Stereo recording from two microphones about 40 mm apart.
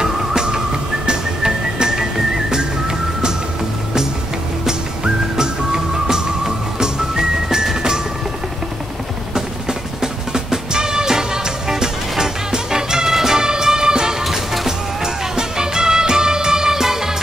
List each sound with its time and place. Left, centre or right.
0.0 s music: centre
4.6 s music: centre
10.3 s music: centre
14.2 s music: centre
15.3 s music: centre